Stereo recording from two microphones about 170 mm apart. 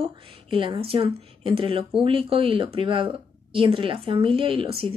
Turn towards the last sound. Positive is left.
turn(degrees=-35)  # may be behind; listen again after turning